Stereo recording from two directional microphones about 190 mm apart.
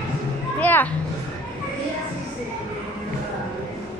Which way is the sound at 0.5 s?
10° left (ahead or behind).